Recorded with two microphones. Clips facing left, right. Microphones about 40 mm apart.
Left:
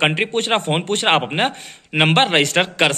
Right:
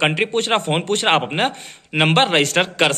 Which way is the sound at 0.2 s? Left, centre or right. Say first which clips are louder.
Right 1 dB; left.